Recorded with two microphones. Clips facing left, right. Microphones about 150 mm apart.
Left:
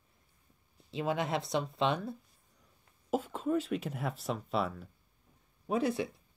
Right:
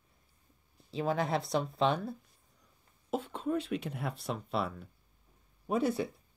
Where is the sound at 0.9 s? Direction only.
Centre (ahead or behind).